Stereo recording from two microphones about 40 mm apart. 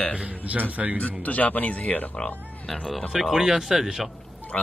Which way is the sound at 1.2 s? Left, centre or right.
Left.